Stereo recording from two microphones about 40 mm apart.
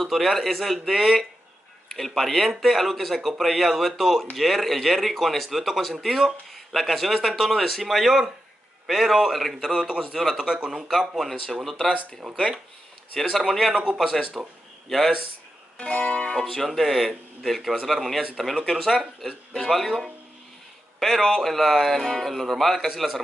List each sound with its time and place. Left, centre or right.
0.0 s speech: centre
10.3 s speech: centre
10.9 s speech: centre
13.1 s speech: centre
15.8 s music: left
16.5 s a man's voice: centre